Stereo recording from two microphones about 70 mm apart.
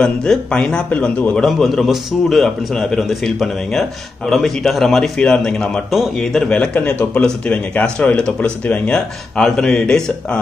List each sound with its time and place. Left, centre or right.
0.0 s speech: centre
1.4 s a man's voice: centre; by 8.9 s left
8.9 s speech: centre